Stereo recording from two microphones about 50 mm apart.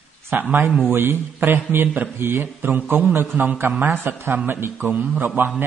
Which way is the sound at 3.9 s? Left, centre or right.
Right.